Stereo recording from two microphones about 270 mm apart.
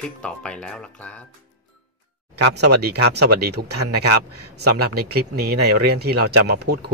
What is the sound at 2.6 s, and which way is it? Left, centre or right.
Speech, right.